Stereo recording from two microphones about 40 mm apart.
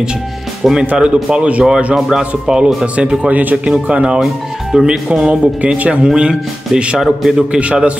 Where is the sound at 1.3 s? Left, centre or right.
Right.